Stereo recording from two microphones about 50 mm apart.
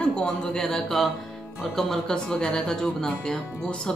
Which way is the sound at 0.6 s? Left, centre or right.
Centre.